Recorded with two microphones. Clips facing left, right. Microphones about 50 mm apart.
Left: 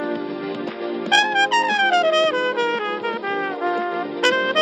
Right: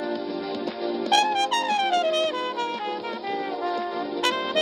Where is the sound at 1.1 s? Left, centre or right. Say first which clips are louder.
Left 5 dB; left.